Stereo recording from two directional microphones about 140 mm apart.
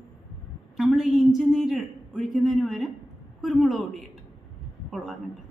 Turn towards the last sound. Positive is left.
turn(degrees=0)  # may be behind; listen again after turning